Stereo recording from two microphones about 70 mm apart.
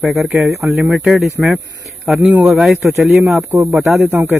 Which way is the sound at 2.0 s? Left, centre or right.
Centre.